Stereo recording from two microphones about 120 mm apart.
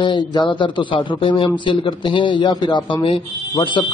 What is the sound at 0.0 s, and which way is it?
Speech, 40° left (ahead or behind).